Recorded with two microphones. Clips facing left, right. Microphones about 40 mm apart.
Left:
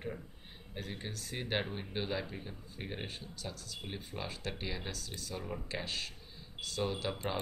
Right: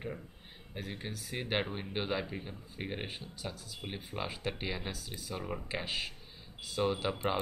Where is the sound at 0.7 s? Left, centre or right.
Centre.